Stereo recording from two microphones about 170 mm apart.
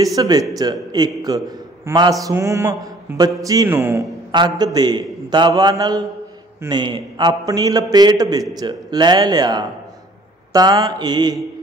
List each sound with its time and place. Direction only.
0.0 s a man's voice: 20° right (ahead or behind)
2.2 s mantra: 15° right (ahead or behind)
4.3 s a man's voice: 25° right (ahead or behind)